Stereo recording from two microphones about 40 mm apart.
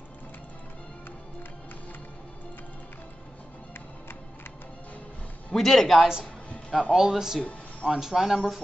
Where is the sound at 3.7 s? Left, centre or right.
Left.